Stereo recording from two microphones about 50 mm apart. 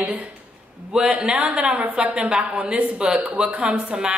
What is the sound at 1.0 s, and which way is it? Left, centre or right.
A man's voice, centre.